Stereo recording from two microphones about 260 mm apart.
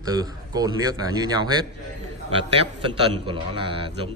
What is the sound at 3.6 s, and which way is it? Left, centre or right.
Speech, centre.